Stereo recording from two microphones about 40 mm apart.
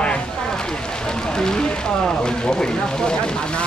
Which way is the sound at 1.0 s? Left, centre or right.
Centre.